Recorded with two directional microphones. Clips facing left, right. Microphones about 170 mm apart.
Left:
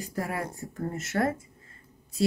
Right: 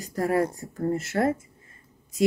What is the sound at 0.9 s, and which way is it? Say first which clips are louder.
Speech: right 4 dB; 25° right (ahead or behind).